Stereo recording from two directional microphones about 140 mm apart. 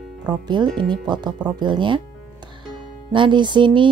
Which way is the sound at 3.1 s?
35° right (ahead or behind).